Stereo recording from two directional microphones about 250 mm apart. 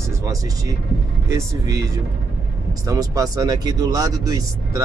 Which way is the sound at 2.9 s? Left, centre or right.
Centre.